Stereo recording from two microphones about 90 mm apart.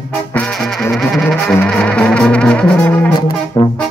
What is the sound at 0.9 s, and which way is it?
Music, 5° left (ahead or behind).